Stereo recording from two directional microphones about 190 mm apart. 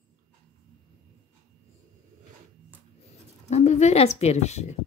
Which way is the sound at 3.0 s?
35° left (ahead or behind).